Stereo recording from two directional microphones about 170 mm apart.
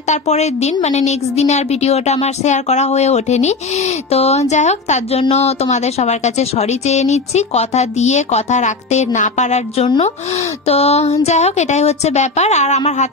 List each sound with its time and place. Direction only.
0.1 s a woman's voice: 40° left (ahead or behind)